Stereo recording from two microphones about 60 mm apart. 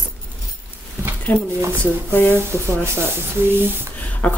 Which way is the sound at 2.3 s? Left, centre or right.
Right.